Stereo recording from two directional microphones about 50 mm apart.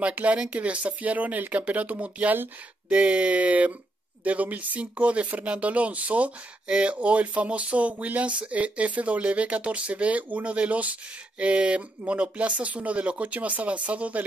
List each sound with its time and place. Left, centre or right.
0.0 s speech: right